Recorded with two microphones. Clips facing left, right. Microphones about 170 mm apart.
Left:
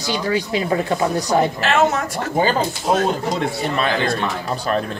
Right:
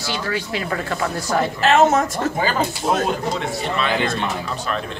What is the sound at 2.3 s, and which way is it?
Speech, 35° left (ahead or behind).